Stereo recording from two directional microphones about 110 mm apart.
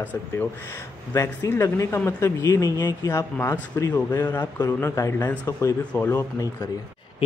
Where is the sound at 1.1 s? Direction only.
25° left (ahead or behind).